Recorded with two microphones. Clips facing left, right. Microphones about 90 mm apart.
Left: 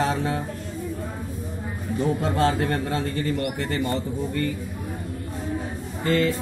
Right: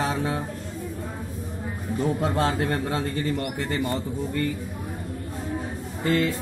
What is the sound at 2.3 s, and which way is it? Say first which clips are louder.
A man's voice: left 2 dB; 15° right (ahead or behind).